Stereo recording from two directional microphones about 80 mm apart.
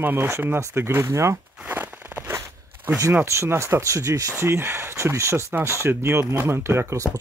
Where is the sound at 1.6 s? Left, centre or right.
Right.